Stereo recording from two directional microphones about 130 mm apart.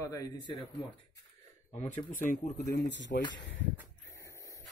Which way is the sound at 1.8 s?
90° left.